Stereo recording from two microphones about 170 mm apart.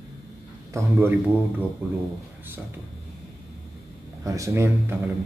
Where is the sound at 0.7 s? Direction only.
15° right (ahead or behind).